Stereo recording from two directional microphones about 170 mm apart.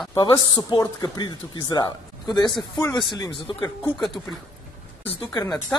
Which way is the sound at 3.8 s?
Centre (ahead or behind).